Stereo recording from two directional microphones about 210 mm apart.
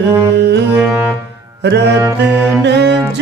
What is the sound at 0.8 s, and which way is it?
Music, 5° right (ahead or behind).